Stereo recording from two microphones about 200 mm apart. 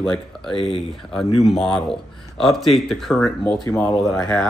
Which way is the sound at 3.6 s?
15° left (ahead or behind).